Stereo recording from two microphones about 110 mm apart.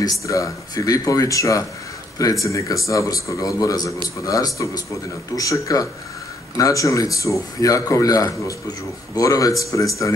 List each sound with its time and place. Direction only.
0.0 s a man's voice: 30° left (ahead or behind)